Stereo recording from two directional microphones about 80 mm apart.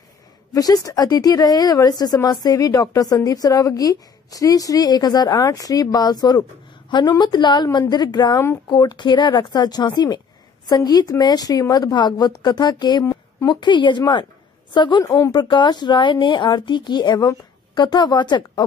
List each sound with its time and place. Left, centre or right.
0.5 s a woman's voice: left
6.9 s a woman's voice: left
15.0 s speech: left
15.3 s a woman's voice: left